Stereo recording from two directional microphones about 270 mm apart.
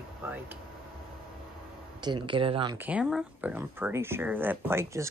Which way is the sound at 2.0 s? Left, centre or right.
Centre.